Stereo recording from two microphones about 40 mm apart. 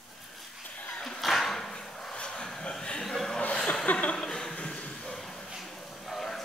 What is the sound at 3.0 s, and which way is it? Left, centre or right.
Chuckle, centre.